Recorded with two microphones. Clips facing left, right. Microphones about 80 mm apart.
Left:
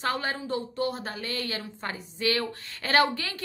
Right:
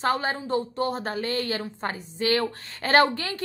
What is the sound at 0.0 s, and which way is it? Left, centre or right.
A woman's voice, right.